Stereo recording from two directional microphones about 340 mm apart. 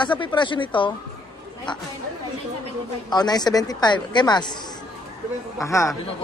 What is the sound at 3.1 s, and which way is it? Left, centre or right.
Speech, centre.